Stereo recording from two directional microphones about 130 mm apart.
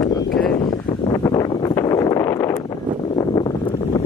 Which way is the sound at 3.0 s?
35° left (ahead or behind).